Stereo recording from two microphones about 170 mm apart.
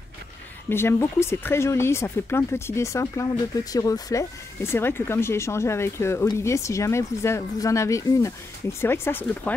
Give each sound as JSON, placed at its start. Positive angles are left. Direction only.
{"t": 0.7, "sound": "speech", "side_deg": 15}